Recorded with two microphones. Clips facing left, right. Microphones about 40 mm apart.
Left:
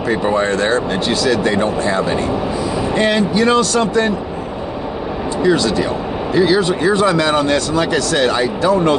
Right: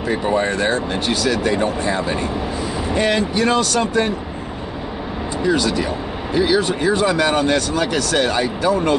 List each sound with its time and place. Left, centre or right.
0.3 s speech: left
3.0 s speech: left
5.4 s speech: left